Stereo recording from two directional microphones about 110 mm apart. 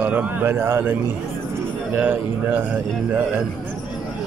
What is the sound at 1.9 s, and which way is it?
Speech, 15° right (ahead or behind).